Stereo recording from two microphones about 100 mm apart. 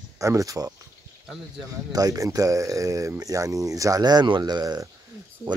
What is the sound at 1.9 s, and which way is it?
Speech, 35° right (ahead or behind).